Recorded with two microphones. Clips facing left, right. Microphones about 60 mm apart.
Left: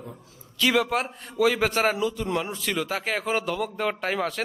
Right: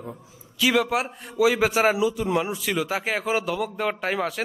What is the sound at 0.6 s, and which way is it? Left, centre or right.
A man's voice, centre.